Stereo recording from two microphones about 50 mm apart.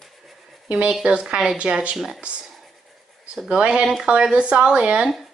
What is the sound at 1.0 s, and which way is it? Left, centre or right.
Speech, centre.